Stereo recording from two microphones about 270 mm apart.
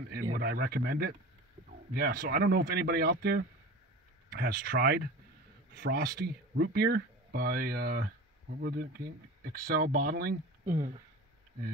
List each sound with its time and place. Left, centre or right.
0.3 s speech: right